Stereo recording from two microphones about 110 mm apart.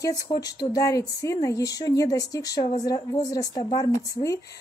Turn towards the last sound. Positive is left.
turn(degrees=35)  # may be behind; listen again after turning